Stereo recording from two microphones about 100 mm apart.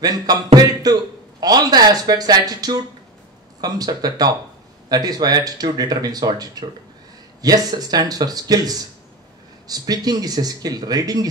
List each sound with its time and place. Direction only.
0.0 s speech: 40° right (ahead or behind)
1.4 s speech: 40° right (ahead or behind)